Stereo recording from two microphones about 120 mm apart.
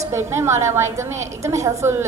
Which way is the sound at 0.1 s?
20° right (ahead or behind).